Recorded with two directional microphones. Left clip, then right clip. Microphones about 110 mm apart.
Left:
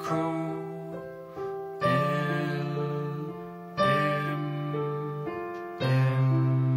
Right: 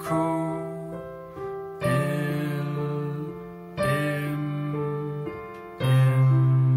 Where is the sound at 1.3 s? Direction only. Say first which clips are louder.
Even; 20° right (ahead or behind).